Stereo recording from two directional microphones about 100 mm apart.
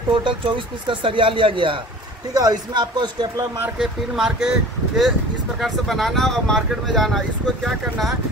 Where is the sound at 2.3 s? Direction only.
40° right (ahead or behind).